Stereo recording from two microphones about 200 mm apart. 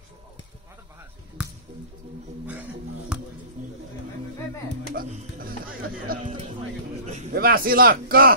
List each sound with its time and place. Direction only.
3.1 s music: 5° right (ahead or behind)
4.9 s speech: 45° right (ahead or behind)
7.3 s a man's voice: 45° right (ahead or behind)